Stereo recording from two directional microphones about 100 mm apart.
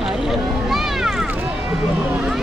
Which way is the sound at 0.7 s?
5° right (ahead or behind).